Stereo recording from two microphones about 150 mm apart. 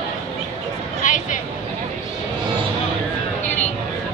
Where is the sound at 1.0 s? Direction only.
60° left (ahead or behind).